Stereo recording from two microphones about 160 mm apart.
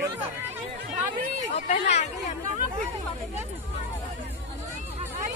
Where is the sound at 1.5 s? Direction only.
45° left (ahead or behind).